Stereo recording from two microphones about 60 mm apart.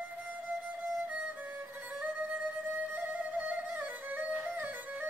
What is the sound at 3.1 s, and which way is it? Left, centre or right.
Music, right.